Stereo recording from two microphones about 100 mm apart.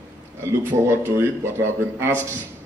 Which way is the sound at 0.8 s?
25° right (ahead or behind).